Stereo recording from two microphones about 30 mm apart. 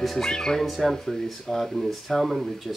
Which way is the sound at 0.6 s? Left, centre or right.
Centre.